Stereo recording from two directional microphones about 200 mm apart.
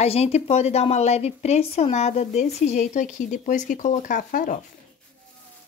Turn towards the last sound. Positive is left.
turn(degrees=40)  # may be behind; listen again after turning